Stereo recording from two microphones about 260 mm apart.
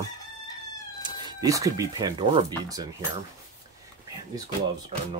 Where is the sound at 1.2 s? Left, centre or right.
Centre.